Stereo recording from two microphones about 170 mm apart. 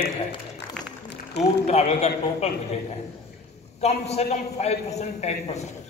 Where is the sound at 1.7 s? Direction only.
40° left (ahead or behind).